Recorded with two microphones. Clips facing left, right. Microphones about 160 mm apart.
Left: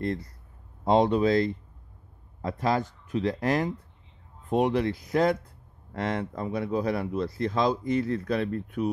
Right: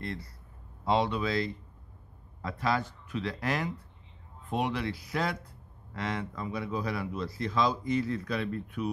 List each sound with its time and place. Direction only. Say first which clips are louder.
0.0 s speech: left 8 dB; 45° left (ahead or behind)